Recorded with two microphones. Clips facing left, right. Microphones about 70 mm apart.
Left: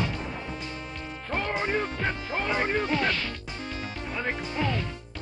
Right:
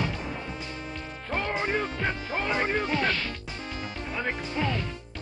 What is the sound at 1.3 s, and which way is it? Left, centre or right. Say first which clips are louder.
Music: even; centre.